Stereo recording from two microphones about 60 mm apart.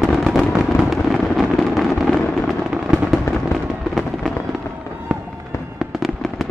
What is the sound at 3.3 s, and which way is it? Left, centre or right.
Fireworks, left.